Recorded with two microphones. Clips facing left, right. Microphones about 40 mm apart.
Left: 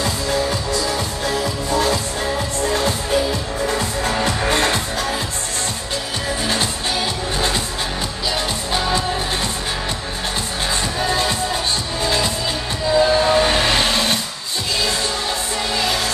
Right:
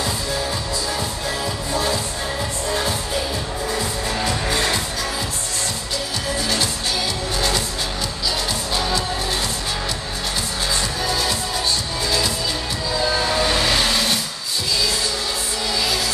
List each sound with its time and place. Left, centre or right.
4.2 s music: left
6.4 s music: left
11.1 s music: left
12.9 s train: left